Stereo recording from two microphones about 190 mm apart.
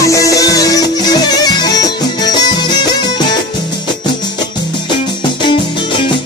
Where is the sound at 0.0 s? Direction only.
15° left (ahead or behind).